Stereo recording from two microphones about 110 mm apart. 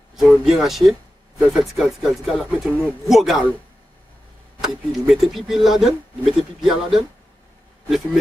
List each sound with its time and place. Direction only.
0.1 s speech: 5° right (ahead or behind)
4.6 s speech: centre (ahead or behind)